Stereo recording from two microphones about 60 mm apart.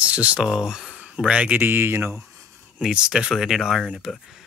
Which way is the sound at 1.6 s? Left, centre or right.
Right.